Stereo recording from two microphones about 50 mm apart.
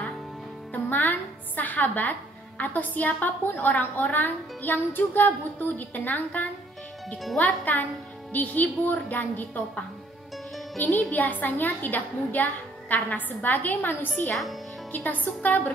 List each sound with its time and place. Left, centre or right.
0.8 s a woman's voice: left
10.8 s a woman's voice: left
14.3 s a child's voice: centre
14.9 s a woman's voice: left